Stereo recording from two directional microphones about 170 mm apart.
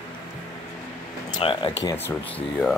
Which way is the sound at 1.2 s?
25° left (ahead or behind).